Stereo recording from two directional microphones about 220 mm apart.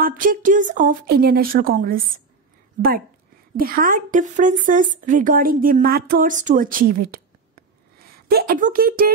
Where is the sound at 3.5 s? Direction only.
40° right (ahead or behind).